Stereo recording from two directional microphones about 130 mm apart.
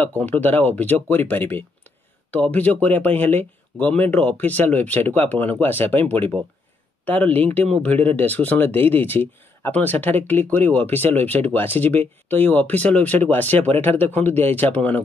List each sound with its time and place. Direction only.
0.2 s speech: 15° left (ahead or behind)